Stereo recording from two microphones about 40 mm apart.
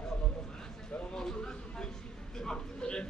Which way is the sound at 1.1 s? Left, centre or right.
Centre.